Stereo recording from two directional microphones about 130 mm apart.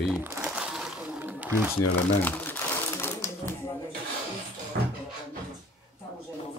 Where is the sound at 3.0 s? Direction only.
20° left (ahead or behind).